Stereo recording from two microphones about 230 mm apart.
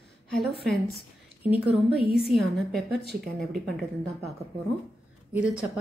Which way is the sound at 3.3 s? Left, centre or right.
Centre.